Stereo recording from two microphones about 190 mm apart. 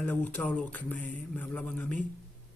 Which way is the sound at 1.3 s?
10° left (ahead or behind).